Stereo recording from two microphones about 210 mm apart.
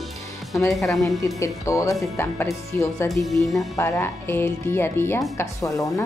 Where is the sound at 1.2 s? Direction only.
15° left (ahead or behind).